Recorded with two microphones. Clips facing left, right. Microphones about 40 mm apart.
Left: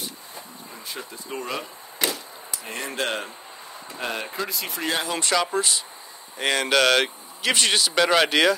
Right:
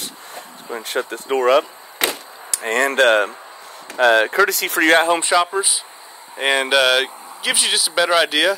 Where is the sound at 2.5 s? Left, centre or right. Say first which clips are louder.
Right 14 dB; right.